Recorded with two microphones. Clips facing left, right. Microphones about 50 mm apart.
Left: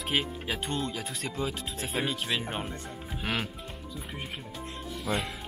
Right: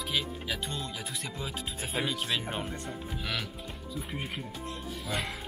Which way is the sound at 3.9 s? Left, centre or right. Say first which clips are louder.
Right 3 dB; centre.